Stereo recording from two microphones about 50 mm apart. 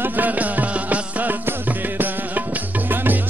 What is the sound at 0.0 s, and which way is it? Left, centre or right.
Music, right.